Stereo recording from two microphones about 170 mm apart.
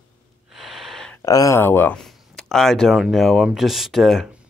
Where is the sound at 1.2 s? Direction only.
20° left (ahead or behind).